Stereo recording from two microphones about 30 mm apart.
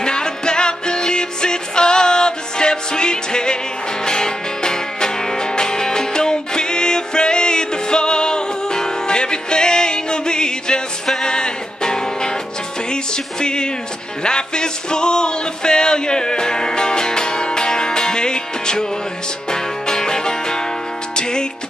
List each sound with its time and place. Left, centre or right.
0.0 s music: left